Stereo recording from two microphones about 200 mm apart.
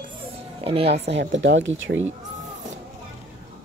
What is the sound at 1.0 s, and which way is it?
Speech, 60° right (ahead or behind).